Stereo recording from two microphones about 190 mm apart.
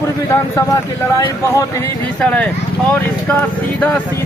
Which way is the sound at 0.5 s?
15° left (ahead or behind).